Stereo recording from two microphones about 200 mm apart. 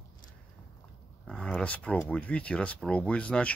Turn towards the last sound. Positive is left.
turn(degrees=5)  # may be behind; listen again after turning